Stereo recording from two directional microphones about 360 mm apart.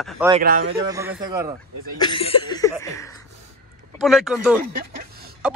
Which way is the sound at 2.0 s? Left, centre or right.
Centre.